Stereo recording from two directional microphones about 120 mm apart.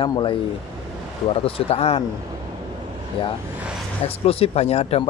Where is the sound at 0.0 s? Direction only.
40° left (ahead or behind).